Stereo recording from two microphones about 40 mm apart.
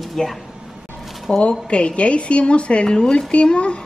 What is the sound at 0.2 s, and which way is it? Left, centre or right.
Speech, centre.